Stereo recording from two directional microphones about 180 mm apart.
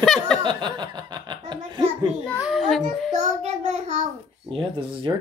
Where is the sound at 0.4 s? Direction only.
25° right (ahead or behind).